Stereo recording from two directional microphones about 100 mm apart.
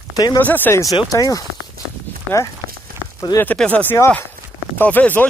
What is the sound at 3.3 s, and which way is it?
Speech, 45° left (ahead or behind).